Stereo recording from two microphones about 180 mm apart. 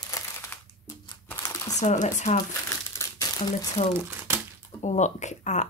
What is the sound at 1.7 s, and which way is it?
Speech, 40° left (ahead or behind).